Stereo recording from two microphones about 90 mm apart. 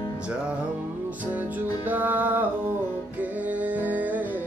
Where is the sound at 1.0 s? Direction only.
15° right (ahead or behind).